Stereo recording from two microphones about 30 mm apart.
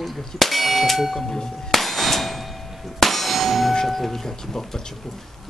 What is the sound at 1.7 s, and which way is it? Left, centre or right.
Clang, centre.